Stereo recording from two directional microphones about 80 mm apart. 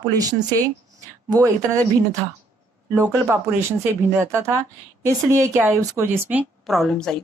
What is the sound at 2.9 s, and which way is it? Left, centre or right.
Speech, right.